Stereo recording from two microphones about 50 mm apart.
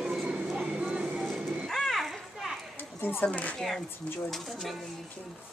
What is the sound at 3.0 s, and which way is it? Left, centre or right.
Speech, left.